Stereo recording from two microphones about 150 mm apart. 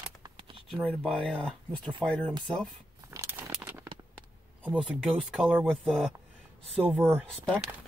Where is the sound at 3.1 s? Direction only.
15° right (ahead or behind).